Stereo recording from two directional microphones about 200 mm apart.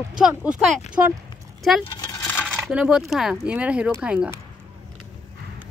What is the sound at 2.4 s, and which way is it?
Speech, 5° right (ahead or behind).